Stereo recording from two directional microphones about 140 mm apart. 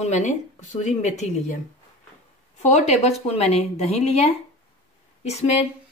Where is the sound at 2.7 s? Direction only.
50° left (ahead or behind).